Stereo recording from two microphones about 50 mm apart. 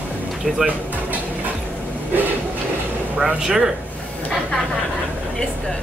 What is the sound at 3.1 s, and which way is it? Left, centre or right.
Speech, centre.